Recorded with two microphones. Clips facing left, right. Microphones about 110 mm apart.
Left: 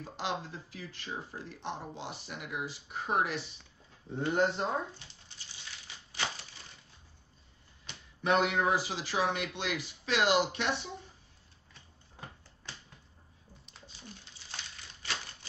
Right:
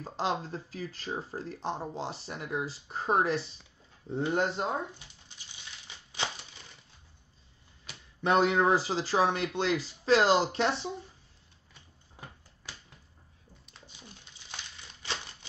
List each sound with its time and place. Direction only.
0.0 s speech: 35° right (ahead or behind)
4.2 s speech: 15° right (ahead or behind)
6.1 s a sound: 20° right (ahead or behind)
8.2 s speech: 35° right (ahead or behind)